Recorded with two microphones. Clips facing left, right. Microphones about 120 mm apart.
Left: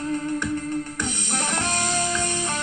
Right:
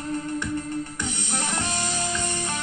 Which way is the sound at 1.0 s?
55° left (ahead or behind).